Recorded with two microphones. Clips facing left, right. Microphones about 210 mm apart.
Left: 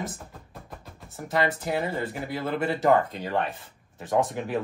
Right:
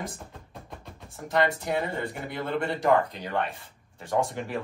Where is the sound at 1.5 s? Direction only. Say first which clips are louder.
Left 1 dB; centre (ahead or behind).